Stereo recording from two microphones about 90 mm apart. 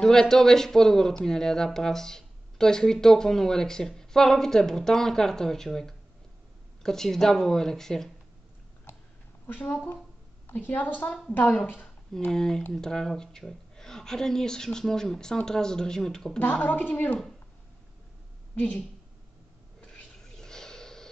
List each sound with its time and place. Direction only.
0.0 s speech: 5° left (ahead or behind)
9.5 s speech: 15° left (ahead or behind)
16.3 s speech: 15° left (ahead or behind)
18.5 s a woman's voice: 15° left (ahead or behind)
19.8 s a sound: 10° left (ahead or behind)